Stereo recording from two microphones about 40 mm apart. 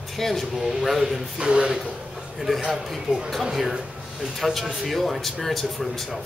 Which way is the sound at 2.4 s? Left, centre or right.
Centre.